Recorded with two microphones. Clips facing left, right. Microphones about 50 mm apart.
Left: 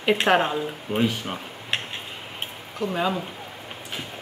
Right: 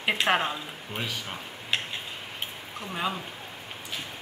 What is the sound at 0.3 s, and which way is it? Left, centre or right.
Speech, centre.